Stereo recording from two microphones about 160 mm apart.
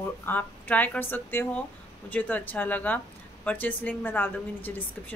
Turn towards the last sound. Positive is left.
turn(degrees=10)  # may be behind; listen again after turning